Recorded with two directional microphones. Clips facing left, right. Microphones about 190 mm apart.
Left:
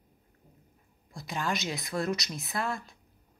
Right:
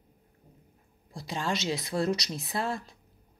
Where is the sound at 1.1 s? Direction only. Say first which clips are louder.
Right 1 dB; 30° right (ahead or behind).